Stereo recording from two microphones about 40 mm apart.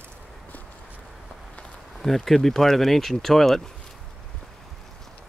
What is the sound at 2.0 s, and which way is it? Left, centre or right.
Speech, centre.